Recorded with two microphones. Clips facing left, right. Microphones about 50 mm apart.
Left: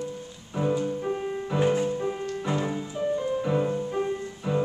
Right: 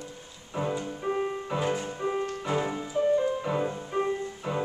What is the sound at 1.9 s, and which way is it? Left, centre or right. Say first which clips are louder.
Music: left 1 dB; right.